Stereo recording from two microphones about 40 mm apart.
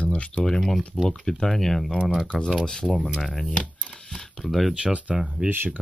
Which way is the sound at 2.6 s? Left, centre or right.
Left.